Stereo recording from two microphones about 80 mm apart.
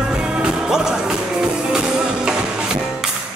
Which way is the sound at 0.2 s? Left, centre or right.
Centre.